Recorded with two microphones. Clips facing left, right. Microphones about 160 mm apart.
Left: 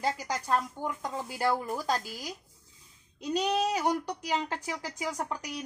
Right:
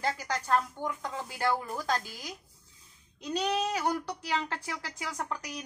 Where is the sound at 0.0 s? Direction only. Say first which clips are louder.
Left 1 dB; 10° left (ahead or behind).